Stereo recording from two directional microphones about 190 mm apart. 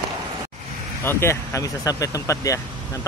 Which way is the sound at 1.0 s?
15° left (ahead or behind).